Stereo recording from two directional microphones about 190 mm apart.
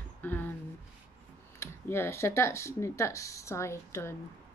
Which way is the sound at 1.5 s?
10° left (ahead or behind).